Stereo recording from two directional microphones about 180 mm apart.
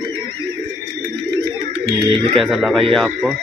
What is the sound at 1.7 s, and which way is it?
Music, 30° right (ahead or behind).